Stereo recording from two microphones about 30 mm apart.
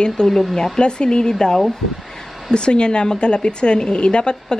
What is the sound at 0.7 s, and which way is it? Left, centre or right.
Speech, left.